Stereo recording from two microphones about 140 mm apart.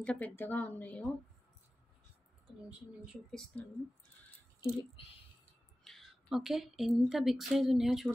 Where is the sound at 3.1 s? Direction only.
5° left (ahead or behind).